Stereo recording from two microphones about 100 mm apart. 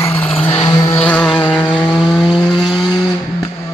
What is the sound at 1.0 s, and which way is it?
Vehicle, 10° left (ahead or behind).